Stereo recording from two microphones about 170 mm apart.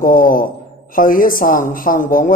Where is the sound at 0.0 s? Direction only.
55° left (ahead or behind).